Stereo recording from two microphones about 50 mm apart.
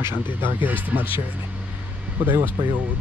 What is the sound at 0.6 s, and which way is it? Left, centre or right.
Speech, right.